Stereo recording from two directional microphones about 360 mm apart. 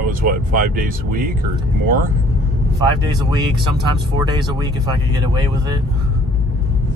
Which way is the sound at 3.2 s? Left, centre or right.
Centre.